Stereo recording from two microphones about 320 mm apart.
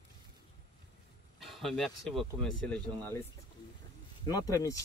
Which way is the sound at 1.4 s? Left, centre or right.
Centre.